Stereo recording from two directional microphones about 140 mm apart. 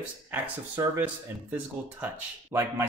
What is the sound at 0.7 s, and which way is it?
Speech, 25° right (ahead or behind).